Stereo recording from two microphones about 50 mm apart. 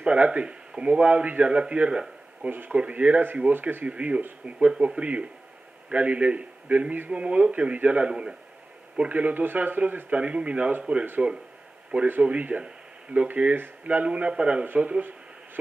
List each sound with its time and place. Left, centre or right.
0.0 s a man's voice: right
2.4 s a man's voice: right
8.1 s a man's voice: centre
8.9 s a man's voice: right
14.0 s a man's voice: right